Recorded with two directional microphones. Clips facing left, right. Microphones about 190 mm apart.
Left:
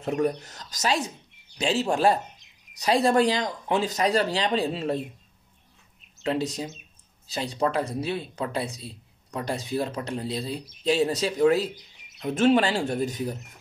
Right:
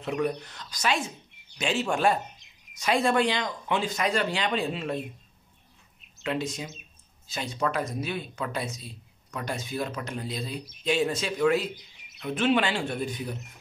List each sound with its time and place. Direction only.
0.0 s speech: 45° left (ahead or behind)
6.2 s speech: 35° left (ahead or behind)